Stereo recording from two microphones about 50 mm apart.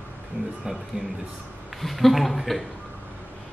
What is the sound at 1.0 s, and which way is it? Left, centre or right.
Speech, right.